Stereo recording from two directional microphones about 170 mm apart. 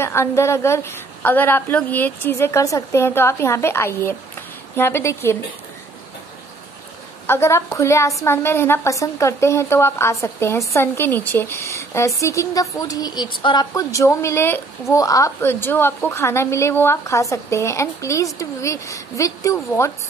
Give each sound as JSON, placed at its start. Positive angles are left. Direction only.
{"t": 0.0, "sound": "a woman's voice", "side_deg": 15}
{"t": 7.2, "sound": "a woman's voice", "side_deg": 15}